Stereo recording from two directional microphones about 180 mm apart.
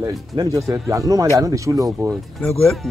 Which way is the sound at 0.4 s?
15° right (ahead or behind).